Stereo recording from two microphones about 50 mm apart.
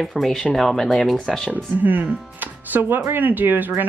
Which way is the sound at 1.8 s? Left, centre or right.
Right.